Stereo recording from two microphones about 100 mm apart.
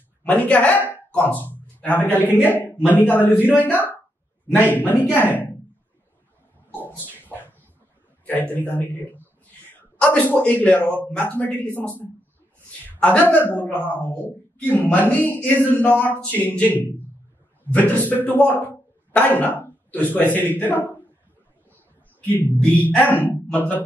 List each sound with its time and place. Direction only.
0.2 s speech: 15° left (ahead or behind)
1.5 s a sound: 20° left (ahead or behind)
2.2 s a man's voice: 15° left (ahead or behind)
6.7 s a sound: 15° left (ahead or behind)
8.5 s a man's voice: 20° left (ahead or behind)
22.3 s speech: 15° left (ahead or behind)